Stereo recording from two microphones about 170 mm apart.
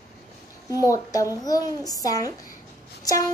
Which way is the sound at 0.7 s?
20° left (ahead or behind).